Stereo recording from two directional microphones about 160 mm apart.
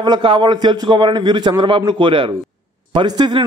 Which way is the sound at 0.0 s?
30° right (ahead or behind).